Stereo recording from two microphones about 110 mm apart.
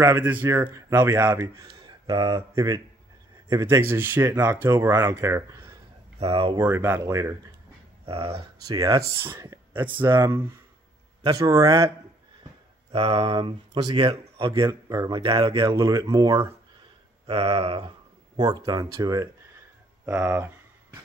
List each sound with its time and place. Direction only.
0.0 s speech: 20° right (ahead or behind)
0.6 s speech: 30° right (ahead or behind)
3.8 s speech: 20° right (ahead or behind)
6.1 s speech: 60° right (ahead or behind)
6.6 s speech: 20° right (ahead or behind)
8.0 s speech: 60° right (ahead or behind)
8.5 s speech: 35° right (ahead or behind)
12.9 s speech: 55° right (ahead or behind); by 16.4 s 35° right (ahead or behind)
17.3 s speech: 65° right (ahead or behind)
17.7 s a sound: 45° right (ahead or behind)
18.5 s speech: 35° right (ahead or behind)
20.1 s a sound: 25° right (ahead or behind)